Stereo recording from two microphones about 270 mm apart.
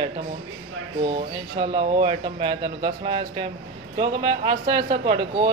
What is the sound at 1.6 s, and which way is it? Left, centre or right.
A man's voice, centre.